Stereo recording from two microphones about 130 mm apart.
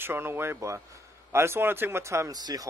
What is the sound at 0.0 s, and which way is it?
Speech, 20° right (ahead or behind).